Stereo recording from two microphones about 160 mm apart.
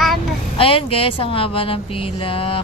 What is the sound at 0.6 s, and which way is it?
Speech, 35° left (ahead or behind).